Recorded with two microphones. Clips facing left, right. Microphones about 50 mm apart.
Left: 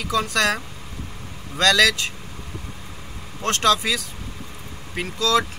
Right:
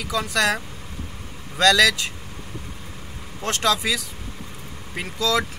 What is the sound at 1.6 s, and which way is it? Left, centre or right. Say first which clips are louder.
Speech: right 1 dB; centre.